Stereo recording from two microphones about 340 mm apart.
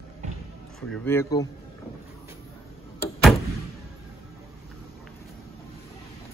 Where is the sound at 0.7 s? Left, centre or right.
Centre.